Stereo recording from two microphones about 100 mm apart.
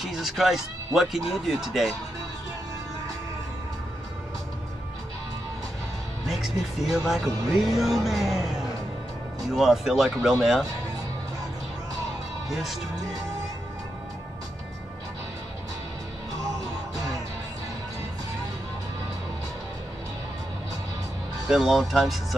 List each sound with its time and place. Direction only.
0.0 s speech: 5° right (ahead or behind)
6.2 s speech: 5° right (ahead or behind)
12.4 s speech: centre (ahead or behind)
16.9 s music: 35° right (ahead or behind)
21.5 s speech: 5° right (ahead or behind)